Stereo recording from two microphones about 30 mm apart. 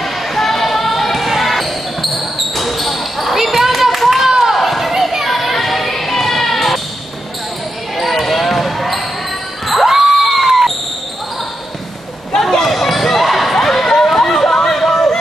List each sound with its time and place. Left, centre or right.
0.0 s a sound: centre
1.2 s basketball bounce: centre
3.3 s a sound: centre
4.4 s run: centre
5.2 s children playing: centre
8.0 s basketball bounce: centre
9.8 s crowd: centre
12.4 s basketball bounce: centre
14.3 s chatter: centre
14.7 s chatter: centre